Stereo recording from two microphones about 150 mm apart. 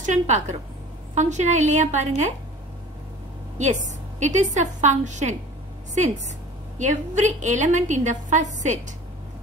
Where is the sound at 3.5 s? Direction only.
50° right (ahead or behind).